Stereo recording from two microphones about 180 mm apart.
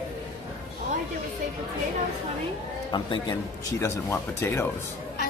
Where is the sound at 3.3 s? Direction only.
20° left (ahead or behind).